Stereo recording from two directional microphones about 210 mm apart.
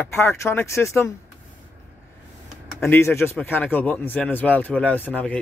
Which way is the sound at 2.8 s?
10° left (ahead or behind).